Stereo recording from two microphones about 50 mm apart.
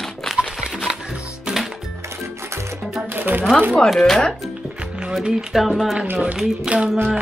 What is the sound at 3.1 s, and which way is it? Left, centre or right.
Music, right.